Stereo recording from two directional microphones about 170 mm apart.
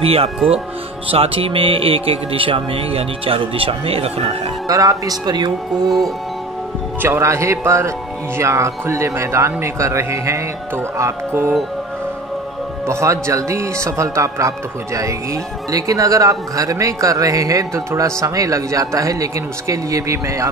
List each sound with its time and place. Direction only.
0.0 s speech: 35° right (ahead or behind)
4.6 s a man's voice: 20° right (ahead or behind)
7.0 s a man's voice: 15° right (ahead or behind)
12.8 s a man's voice: 20° right (ahead or behind)
15.7 s a man's voice: 20° right (ahead or behind)